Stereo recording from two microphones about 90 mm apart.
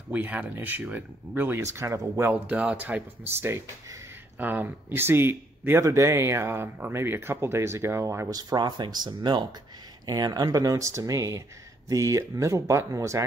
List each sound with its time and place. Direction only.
0.1 s speech: 20° right (ahead or behind)
1.6 s speech: 35° right (ahead or behind)
2.4 s speech: 15° right (ahead or behind)
5.9 s speech: 35° right (ahead or behind)
8.3 s speech: 45° right (ahead or behind)